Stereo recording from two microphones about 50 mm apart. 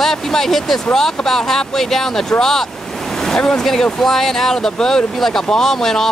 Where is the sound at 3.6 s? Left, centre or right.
Centre.